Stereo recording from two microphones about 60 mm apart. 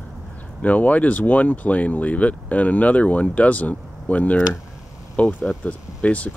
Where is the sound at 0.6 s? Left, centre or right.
Left.